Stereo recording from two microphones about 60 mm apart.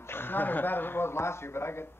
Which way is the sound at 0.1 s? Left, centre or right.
Left.